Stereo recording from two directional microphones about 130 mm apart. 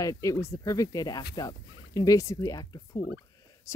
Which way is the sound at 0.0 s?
25° left (ahead or behind).